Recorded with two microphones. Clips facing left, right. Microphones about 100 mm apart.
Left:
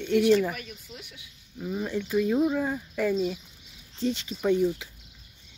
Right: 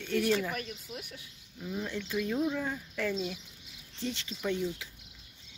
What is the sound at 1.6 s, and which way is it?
Speech, 20° left (ahead or behind).